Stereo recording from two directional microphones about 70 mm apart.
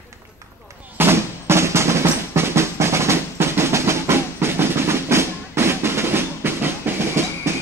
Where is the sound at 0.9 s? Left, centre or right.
Right.